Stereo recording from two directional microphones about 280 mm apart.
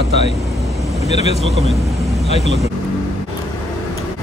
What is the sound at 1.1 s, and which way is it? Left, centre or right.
Speech, left.